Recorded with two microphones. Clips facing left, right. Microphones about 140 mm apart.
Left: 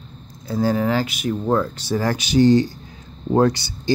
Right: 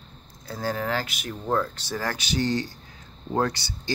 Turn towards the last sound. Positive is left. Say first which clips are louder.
# left 9 dB
turn(degrees=15)  # may be behind; listen again after turning